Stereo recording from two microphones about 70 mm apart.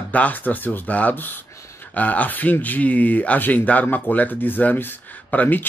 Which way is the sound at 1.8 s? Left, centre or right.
Left.